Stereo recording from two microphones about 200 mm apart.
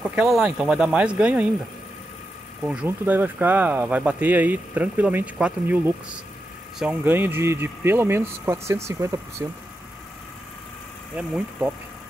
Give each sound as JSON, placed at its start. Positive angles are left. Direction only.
{"t": 0.0, "sound": "speech", "side_deg": -5}
{"t": 2.6, "sound": "speech", "side_deg": -5}
{"t": 11.1, "sound": "speech", "side_deg": -5}